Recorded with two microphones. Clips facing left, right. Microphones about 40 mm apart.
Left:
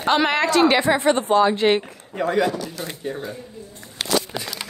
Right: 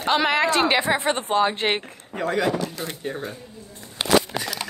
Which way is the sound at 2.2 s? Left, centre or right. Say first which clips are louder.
Left 3 dB; centre.